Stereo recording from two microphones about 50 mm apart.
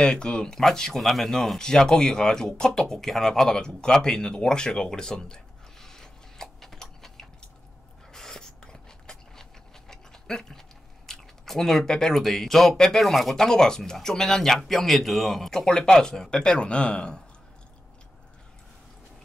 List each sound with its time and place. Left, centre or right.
0.0 s speech: centre
8.1 s a sound: centre
11.1 s speech: centre